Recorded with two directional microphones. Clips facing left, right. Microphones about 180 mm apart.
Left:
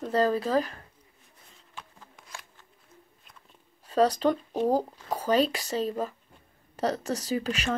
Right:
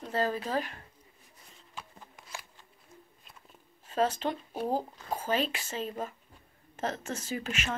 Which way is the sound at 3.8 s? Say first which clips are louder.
Left 6 dB; 40° left (ahead or behind).